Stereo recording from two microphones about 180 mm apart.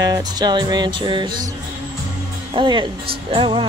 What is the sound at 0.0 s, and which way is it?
Music, 20° right (ahead or behind).